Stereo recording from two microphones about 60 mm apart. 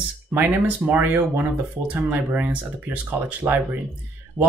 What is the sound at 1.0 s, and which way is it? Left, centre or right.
Speech, right.